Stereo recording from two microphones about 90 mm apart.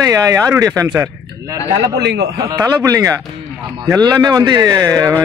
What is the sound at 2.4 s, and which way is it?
Speech, 40° right (ahead or behind).